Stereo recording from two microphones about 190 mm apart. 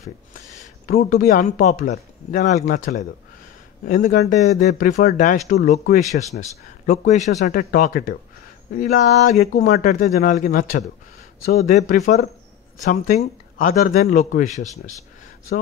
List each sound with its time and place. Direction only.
0.8 s speech: 50° left (ahead or behind)
6.9 s speech: 40° left (ahead or behind)